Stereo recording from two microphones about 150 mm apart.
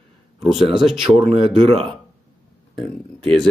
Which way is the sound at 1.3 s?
40° right (ahead or behind).